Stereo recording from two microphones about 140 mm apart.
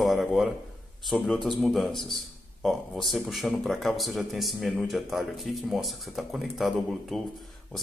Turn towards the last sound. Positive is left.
turn(degrees=0)  # may be behind; listen again after turning